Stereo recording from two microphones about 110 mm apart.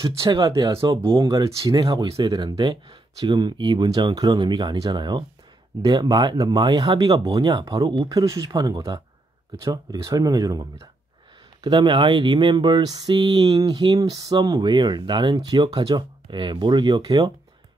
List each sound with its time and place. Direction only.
0.2 s speech: 40° right (ahead or behind)
11.6 s speech: 45° right (ahead or behind)